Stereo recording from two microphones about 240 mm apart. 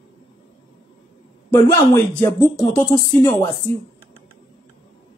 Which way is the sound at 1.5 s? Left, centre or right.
Centre.